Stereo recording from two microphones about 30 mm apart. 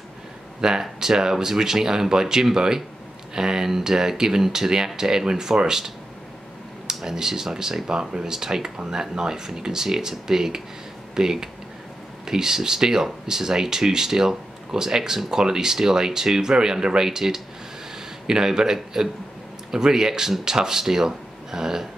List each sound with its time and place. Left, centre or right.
0.6 s speech: right
6.9 s speech: centre